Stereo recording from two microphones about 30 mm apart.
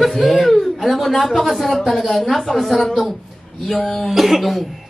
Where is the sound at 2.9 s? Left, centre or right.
Centre.